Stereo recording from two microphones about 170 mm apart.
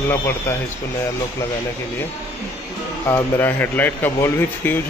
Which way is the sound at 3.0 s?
10° left (ahead or behind).